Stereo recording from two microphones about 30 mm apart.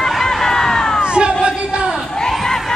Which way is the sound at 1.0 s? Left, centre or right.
Right.